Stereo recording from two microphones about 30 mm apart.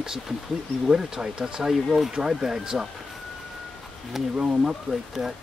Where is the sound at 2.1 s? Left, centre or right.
Right.